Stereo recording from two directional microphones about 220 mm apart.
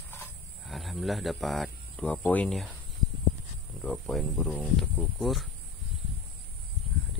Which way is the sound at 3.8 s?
Centre (ahead or behind).